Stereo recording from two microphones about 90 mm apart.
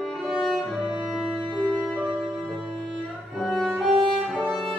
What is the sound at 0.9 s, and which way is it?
Music, 15° right (ahead or behind).